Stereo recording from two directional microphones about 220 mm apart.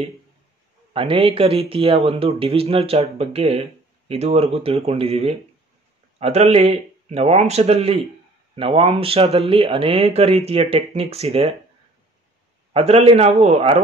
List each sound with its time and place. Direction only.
0.9 s speech: 25° right (ahead or behind)
12.7 s speech: 25° right (ahead or behind)